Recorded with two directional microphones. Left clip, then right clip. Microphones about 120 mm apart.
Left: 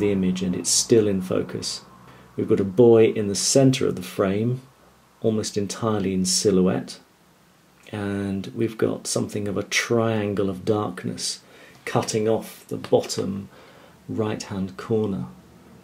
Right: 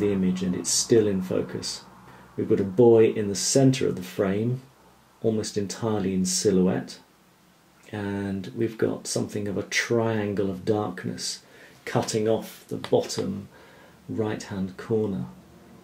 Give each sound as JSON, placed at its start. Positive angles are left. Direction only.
{"t": 0.0, "sound": "speech", "side_deg": 15}